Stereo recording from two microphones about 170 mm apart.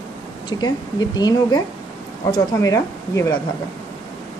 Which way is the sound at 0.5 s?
25° left (ahead or behind).